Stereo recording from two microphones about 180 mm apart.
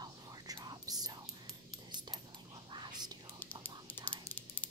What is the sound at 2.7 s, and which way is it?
Whispering, 25° right (ahead or behind).